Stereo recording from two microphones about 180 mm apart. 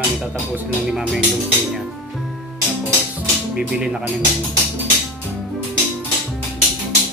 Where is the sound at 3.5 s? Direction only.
5° right (ahead or behind).